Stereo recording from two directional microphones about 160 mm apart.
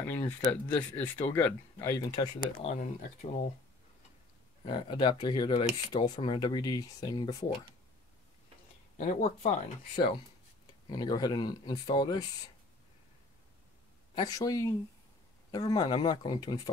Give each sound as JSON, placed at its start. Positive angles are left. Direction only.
{"t": 0.0, "sound": "speech", "side_deg": 15}
{"t": 2.6, "sound": "speech", "side_deg": 45}
{"t": 4.6, "sound": "speech", "side_deg": 30}
{"t": 8.9, "sound": "speech", "side_deg": 50}
{"t": 9.9, "sound": "speech", "side_deg": 30}
{"t": 14.1, "sound": "speech", "side_deg": 25}